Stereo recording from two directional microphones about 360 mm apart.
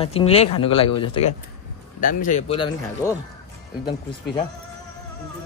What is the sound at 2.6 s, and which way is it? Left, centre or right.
Speech, centre.